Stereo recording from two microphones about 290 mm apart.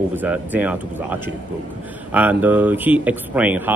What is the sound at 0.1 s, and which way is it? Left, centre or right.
Speech, centre.